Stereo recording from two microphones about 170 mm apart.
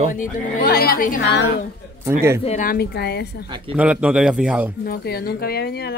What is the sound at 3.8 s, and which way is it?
Speech, 5° right (ahead or behind).